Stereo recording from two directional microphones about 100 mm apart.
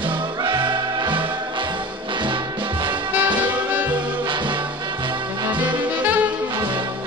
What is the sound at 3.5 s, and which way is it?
Music, 15° right (ahead or behind).